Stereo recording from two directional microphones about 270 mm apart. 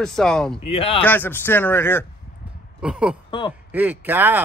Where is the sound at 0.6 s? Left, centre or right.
Left.